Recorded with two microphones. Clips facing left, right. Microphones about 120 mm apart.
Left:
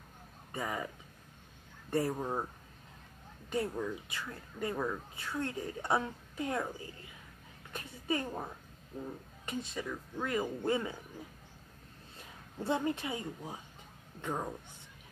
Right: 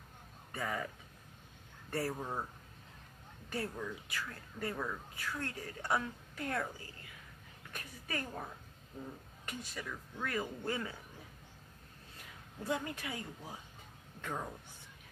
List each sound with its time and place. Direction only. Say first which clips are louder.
0.5 s speech: left 1 dB; 15° left (ahead or behind)
1.9 s a woman's voice: left 5 dB; 20° left (ahead or behind)
3.4 s a woman's voice: left 5 dB; 20° left (ahead or behind)
7.7 s a sound: left 7 dB; 25° left (ahead or behind)
9.5 s a woman's voice: left 6 dB; 25° left (ahead or behind)
12.2 s a woman's voice: left 5 dB; 25° left (ahead or behind)